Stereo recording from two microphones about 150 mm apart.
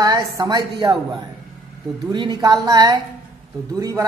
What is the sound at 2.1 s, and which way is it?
Speech, 25° right (ahead or behind).